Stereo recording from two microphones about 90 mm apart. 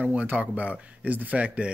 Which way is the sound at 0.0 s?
15° right (ahead or behind).